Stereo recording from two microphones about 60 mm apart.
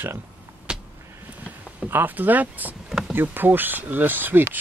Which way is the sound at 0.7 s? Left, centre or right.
Centre.